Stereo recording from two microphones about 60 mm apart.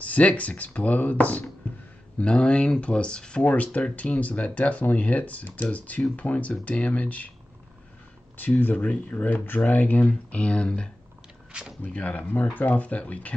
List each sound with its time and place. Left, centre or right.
0.0 s speech: left
2.1 s speech: centre
8.4 s speech: left
11.9 s speech: left